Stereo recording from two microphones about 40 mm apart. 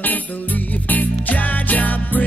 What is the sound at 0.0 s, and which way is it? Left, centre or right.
Music, left.